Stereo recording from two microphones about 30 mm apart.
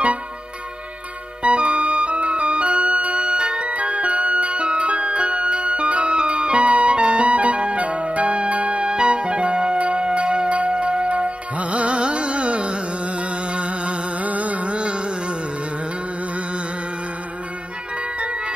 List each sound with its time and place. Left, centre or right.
1.4 s music: right
3.2 s music: right
3.6 s music: right
7.0 s music: right
8.8 s music: right
9.8 s chime: right
10.0 s tubular bells: right
10.6 s music: right
14.2 s music: right
14.7 s music: right